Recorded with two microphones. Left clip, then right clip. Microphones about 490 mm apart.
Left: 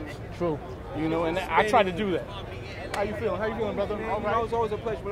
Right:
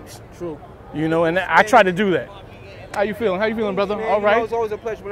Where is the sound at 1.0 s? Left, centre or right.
Right.